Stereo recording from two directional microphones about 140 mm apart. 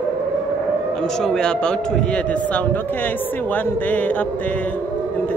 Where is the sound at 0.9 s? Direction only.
5° left (ahead or behind).